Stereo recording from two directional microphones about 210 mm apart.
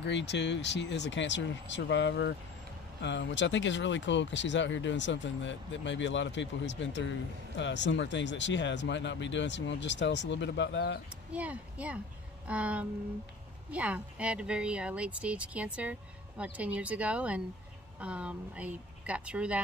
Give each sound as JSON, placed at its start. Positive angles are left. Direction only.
{"t": 0.0, "sound": "speech", "side_deg": 55}
{"t": 11.3, "sound": "a woman's voice", "side_deg": -5}